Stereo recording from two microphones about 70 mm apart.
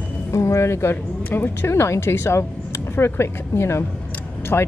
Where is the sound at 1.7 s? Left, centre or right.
Left.